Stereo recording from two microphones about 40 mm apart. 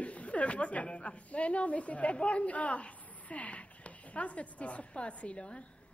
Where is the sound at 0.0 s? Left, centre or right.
Left.